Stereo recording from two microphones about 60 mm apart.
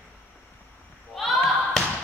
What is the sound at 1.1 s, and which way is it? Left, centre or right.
Basketball bounce, centre.